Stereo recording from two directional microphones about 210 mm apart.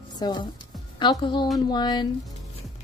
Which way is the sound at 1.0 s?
20° left (ahead or behind).